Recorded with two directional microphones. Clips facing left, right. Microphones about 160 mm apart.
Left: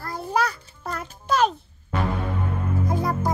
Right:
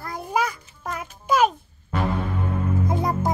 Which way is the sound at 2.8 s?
20° right (ahead or behind).